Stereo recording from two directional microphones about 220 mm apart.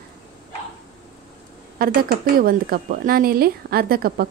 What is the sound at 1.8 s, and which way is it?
A woman's voice, 40° right (ahead or behind).